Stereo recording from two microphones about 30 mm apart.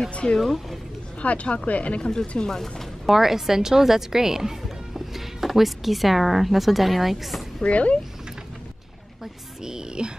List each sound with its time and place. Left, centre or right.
0.1 s speech: left
0.4 s speech: centre
1.2 s speech: left
2.0 s speech: left
3.1 s speech: centre
7.6 s speech: left
9.2 s speech: right